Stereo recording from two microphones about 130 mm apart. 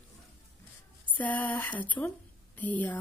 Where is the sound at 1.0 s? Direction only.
10° left (ahead or behind).